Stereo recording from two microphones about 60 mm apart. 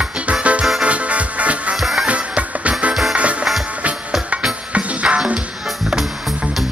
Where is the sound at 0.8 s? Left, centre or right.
Right.